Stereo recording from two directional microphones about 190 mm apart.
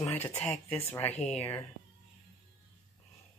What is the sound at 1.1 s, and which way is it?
Speech, 35° left (ahead or behind).